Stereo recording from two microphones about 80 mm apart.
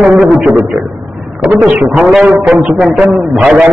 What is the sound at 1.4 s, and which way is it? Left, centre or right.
A man's voice, centre.